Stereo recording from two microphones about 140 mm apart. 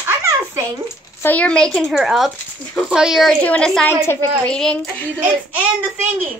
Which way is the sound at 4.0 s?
15° left (ahead or behind).